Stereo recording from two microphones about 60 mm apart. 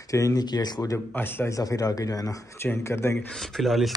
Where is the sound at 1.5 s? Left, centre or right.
Left.